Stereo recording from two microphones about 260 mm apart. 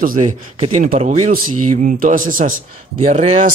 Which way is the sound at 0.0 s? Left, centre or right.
Right.